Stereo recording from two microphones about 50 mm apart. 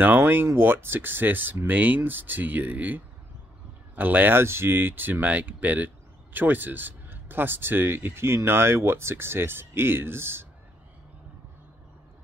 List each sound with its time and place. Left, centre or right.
0.0 s speech: right
4.4 s speech: right